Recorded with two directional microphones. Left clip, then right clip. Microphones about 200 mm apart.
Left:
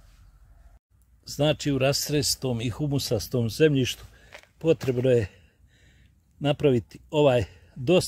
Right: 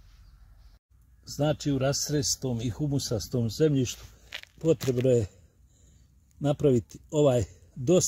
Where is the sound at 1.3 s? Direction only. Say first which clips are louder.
Left 4 dB; 35° left (ahead or behind).